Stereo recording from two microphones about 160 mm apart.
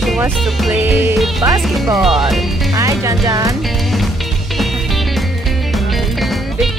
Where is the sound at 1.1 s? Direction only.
Centre (ahead or behind).